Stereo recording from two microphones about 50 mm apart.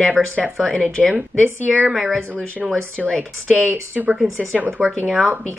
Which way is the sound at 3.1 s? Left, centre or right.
Centre.